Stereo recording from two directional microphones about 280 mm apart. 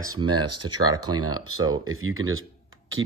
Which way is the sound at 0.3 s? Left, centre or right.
Right.